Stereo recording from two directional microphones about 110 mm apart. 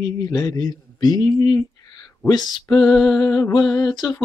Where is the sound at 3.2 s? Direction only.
30° left (ahead or behind).